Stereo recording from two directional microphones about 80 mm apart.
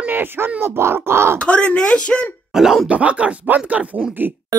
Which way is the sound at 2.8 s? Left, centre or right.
Centre.